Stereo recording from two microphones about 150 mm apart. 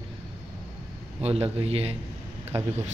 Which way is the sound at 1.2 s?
40° right (ahead or behind).